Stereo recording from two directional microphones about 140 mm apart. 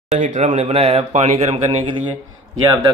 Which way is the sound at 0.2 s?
60° right (ahead or behind).